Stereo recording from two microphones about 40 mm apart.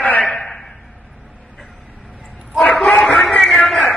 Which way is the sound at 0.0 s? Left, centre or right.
Left.